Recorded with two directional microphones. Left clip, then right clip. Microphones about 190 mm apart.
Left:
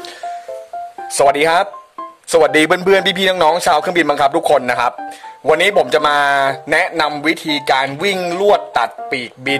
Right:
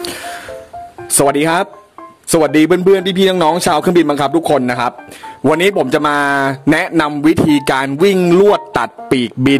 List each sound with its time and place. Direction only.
1.1 s speech: 10° right (ahead or behind)
5.5 s a man's voice: 20° right (ahead or behind)